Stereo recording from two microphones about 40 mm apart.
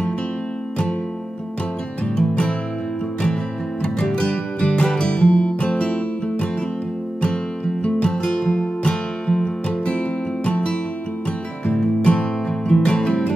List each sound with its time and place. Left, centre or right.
2.1 s music: left
3.8 s music: left
7.8 s music: left
12.0 s music: left